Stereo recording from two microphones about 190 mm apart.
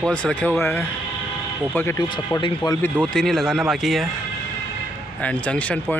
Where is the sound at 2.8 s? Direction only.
5° left (ahead or behind).